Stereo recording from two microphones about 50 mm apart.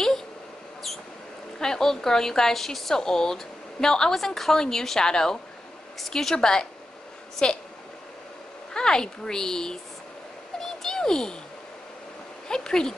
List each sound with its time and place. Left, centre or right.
1.6 s a woman's voice: centre
8.7 s a woman's voice: centre
10.6 s a sound: centre
12.4 s a woman's voice: centre